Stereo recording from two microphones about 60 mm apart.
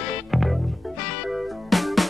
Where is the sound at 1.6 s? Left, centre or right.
Centre.